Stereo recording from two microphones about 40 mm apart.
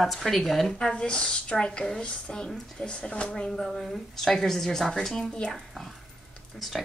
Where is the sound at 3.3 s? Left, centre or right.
Centre.